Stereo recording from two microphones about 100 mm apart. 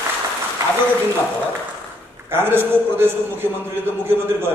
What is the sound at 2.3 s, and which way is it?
A man's voice, 20° right (ahead or behind).